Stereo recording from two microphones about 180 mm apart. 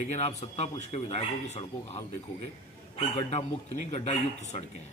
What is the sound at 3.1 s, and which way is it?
A man's voice, 35° left (ahead or behind).